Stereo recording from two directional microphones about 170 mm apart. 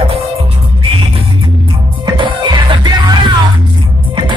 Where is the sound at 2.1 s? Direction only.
25° right (ahead or behind).